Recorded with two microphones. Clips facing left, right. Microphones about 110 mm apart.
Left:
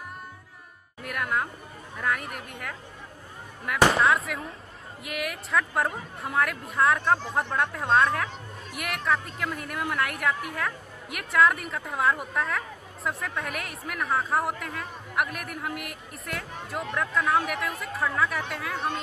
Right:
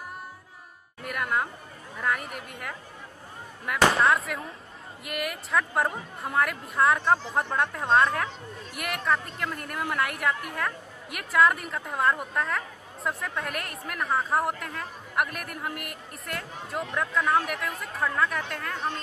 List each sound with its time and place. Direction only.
1.0 s music: centre (ahead or behind)
2.0 s speech: centre (ahead or behind)